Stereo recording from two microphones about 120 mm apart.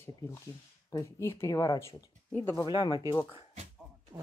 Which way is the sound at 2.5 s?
40° left (ahead or behind).